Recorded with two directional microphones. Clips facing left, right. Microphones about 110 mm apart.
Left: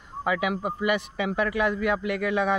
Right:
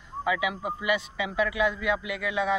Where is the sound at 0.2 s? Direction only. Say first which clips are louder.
Left 2 dB; 50° left (ahead or behind).